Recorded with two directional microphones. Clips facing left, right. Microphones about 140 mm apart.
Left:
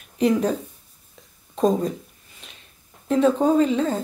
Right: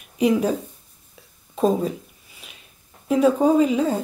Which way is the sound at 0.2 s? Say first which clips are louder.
Right 1 dB; 10° right (ahead or behind).